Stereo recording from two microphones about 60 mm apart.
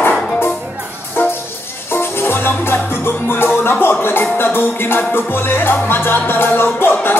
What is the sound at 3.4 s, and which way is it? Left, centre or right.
Music, left.